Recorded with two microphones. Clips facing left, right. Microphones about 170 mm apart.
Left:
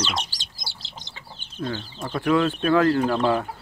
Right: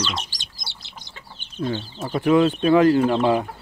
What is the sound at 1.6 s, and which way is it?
Speech, 20° right (ahead or behind).